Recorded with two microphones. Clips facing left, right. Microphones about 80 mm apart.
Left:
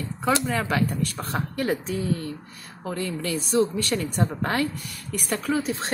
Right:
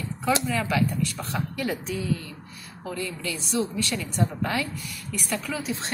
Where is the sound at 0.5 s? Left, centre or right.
Left.